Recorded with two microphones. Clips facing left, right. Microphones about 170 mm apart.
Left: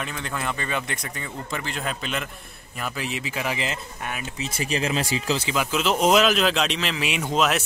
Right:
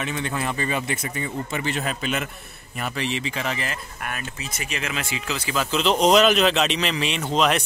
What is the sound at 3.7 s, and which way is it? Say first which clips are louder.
Speech: left 1 dB; 20° left (ahead or behind).